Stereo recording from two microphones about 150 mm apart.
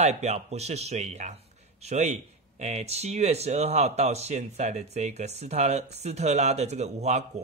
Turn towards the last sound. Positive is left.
turn(degrees=-50)  # may be behind; listen again after turning